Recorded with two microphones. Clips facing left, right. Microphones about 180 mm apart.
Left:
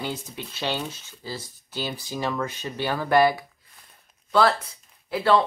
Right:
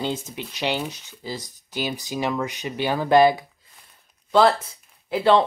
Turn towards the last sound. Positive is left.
turn(degrees=-20)  # may be behind; listen again after turning